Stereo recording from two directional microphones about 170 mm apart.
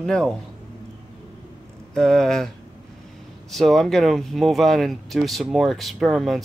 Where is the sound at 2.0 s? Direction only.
5° left (ahead or behind).